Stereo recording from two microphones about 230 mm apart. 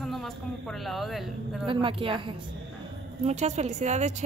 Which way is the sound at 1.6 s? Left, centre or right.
Right.